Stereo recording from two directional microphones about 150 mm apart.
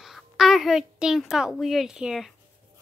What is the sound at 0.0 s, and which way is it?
A woman's voice, centre (ahead or behind).